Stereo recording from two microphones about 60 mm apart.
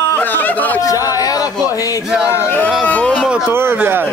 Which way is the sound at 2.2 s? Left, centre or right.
Left.